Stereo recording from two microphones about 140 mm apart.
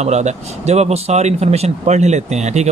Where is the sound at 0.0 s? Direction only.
55° right (ahead or behind).